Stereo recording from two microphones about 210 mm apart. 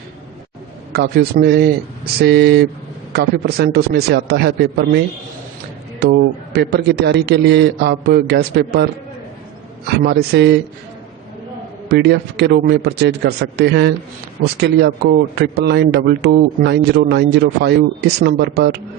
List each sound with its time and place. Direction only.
0.9 s a man's voice: 45° right (ahead or behind)
10.0 s a man's voice: 50° right (ahead or behind)
11.9 s a man's voice: 50° right (ahead or behind)